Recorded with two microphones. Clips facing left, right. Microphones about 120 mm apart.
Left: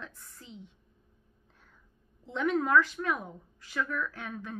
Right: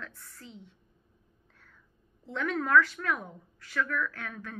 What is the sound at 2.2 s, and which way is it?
A woman's voice, 20° left (ahead or behind).